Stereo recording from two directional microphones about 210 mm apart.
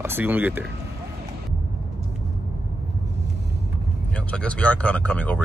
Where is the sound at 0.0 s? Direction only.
10° right (ahead or behind).